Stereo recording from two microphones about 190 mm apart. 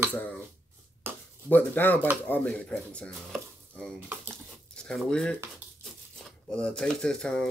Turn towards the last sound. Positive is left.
turn(degrees=5)  # may be behind; listen again after turning